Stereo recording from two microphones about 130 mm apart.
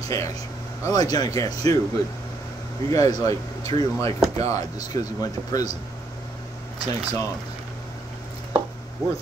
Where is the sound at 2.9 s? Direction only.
25° left (ahead or behind).